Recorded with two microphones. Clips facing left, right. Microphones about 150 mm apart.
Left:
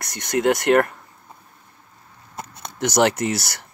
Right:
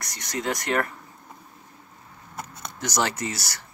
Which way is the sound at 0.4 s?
60° left (ahead or behind).